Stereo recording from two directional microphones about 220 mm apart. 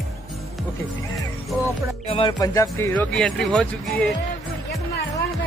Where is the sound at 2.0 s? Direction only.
25° left (ahead or behind); by 4.1 s centre (ahead or behind).